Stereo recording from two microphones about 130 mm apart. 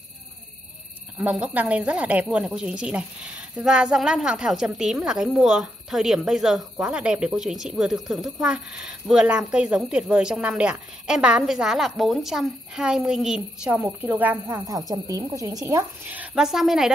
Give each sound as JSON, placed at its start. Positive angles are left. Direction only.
{"t": 1.1, "sound": "a woman's voice", "side_deg": -10}
{"t": 14.6, "sound": "speech", "side_deg": -30}
{"t": 16.1, "sound": "speech", "side_deg": -10}